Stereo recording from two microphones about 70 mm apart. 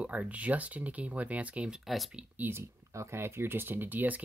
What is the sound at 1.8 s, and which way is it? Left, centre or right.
Speech, centre.